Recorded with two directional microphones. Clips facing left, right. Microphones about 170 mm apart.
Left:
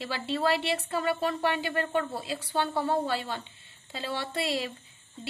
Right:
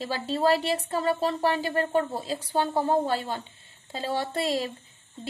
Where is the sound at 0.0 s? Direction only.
40° right (ahead or behind).